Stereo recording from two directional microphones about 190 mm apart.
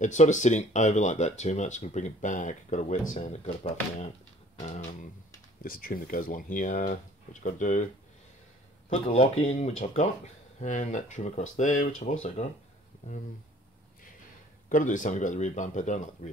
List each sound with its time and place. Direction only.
0.0 s speech: 40° left (ahead or behind)
5.6 s speech: 50° left (ahead or behind)
8.9 s speech: 30° left (ahead or behind)
9.4 s speech: 40° left (ahead or behind)
14.7 s speech: 45° left (ahead or behind)